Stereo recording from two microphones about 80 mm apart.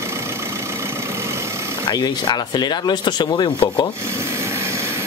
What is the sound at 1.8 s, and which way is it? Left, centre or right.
Speech, left.